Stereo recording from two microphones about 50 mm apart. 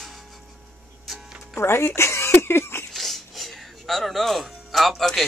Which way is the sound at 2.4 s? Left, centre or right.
Left.